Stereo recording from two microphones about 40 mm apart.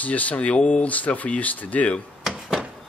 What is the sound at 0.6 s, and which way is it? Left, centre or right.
Speech, left.